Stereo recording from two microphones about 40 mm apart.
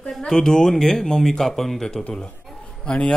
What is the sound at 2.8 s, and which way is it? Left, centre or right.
Speech, left.